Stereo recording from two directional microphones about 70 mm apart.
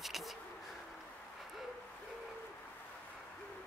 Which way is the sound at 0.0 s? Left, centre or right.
Centre.